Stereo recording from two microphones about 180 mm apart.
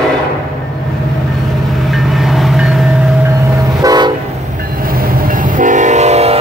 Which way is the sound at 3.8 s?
20° right (ahead or behind).